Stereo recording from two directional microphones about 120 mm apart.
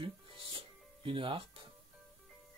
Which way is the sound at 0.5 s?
45° right (ahead or behind).